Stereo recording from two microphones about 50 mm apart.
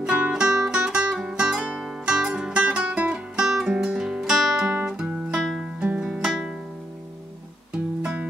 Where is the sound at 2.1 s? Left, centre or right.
Centre.